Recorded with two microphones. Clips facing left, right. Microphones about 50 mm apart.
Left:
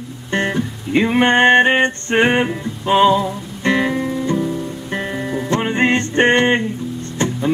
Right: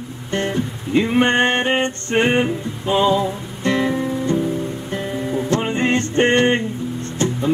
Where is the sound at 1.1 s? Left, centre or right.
Left.